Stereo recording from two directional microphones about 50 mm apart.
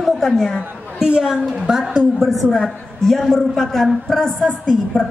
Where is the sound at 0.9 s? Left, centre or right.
Centre.